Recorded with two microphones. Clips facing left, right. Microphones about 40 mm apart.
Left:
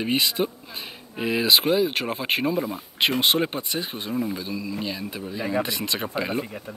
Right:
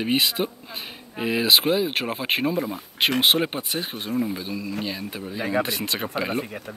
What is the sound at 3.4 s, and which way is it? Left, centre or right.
Speech, centre.